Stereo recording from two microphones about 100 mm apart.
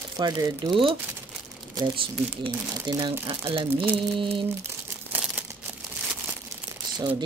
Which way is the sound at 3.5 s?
60° right (ahead or behind).